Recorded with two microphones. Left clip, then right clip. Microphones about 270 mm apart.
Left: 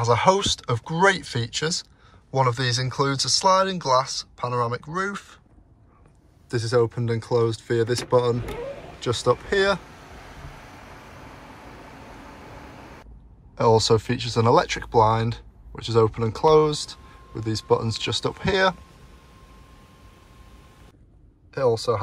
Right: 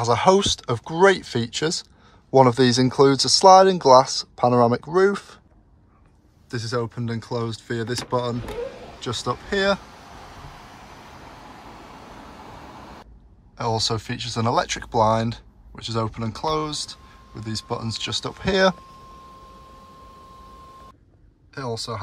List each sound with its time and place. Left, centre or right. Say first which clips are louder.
0.0 s speech: right 2 dB; centre
6.5 s speech: left 5 dB; centre
13.6 s speech: left 6 dB; centre
21.5 s speech: left 8 dB; centre